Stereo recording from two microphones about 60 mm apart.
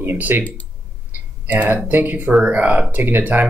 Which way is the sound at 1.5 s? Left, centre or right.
Right.